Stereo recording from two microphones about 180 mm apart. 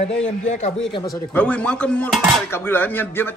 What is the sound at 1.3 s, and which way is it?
Cutlery, 5° left (ahead or behind).